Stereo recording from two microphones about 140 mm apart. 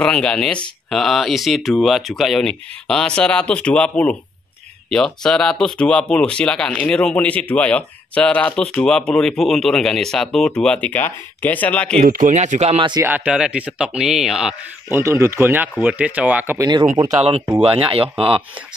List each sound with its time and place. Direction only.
0.0 s speech: 5° left (ahead or behind)
12.0 s speech: 80° right; by 12.8 s 50° right (ahead or behind)
13.0 s speech: 10° right (ahead or behind)
15.0 s speech: 20° right (ahead or behind)
16.5 s speech: 25° right (ahead or behind)
17.6 s speech: 45° right (ahead or behind)